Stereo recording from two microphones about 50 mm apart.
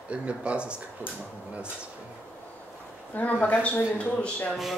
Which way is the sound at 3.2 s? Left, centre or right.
Left.